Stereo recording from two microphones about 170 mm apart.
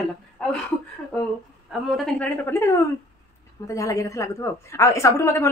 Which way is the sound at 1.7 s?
Centre (ahead or behind).